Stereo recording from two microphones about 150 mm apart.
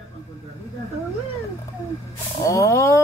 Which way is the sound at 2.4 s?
20° left (ahead or behind).